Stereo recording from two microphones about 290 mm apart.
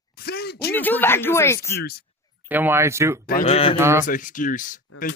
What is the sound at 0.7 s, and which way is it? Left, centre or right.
Speech, centre.